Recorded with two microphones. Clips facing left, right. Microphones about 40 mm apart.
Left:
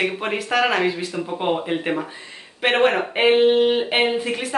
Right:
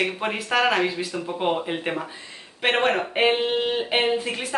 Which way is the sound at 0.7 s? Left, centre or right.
Centre.